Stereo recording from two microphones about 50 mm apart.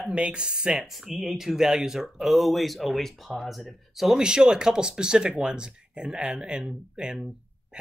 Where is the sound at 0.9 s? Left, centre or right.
Centre.